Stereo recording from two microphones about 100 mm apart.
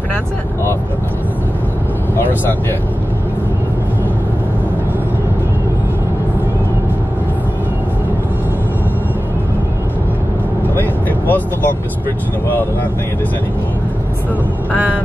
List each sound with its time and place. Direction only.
10.8 s vehicle: 20° left (ahead or behind)